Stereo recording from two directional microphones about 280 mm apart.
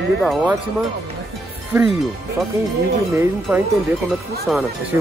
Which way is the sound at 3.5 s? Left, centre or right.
Centre.